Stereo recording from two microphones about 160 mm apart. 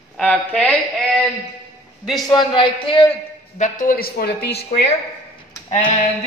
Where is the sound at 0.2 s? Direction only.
5° left (ahead or behind).